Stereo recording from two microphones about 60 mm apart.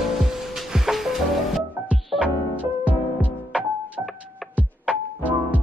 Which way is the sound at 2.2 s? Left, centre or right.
Right.